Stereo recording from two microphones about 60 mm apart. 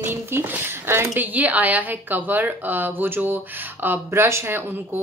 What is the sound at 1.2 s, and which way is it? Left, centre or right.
A woman's voice, right.